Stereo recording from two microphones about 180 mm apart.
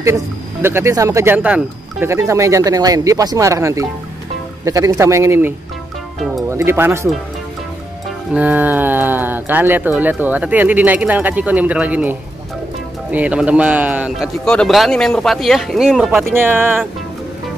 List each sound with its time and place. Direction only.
0.0 s speech: 15° right (ahead or behind)
6.1 s music: centre (ahead or behind)
6.5 s speech: 15° right (ahead or behind)
8.3 s a man's voice: 10° right (ahead or behind)